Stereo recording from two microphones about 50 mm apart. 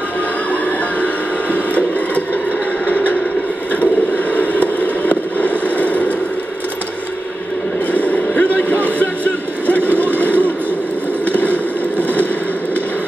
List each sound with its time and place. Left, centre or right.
1.0 s printer: left
2.9 s a sound: left
4.3 s fireworks: left
7.9 s boat: left
8.8 s a sound: left
11.3 s fireworks: left